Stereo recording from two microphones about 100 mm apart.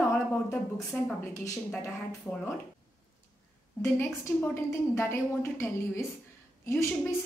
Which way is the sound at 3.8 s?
25° left (ahead or behind).